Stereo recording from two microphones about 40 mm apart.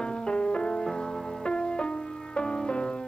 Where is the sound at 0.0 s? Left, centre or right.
Left.